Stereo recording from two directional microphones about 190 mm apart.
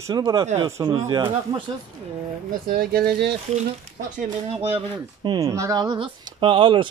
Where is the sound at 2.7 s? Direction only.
55° right (ahead or behind).